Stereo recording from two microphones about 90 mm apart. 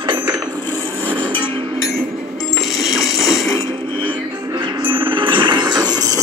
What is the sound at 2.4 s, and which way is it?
Coin, centre (ahead or behind).